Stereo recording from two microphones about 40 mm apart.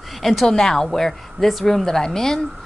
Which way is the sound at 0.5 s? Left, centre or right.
Centre.